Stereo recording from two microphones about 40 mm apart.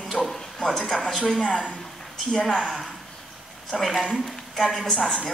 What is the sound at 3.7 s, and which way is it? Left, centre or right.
Speech, centre.